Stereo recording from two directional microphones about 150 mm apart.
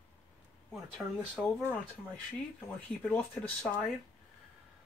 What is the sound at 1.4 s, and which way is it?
Speech, 5° right (ahead or behind).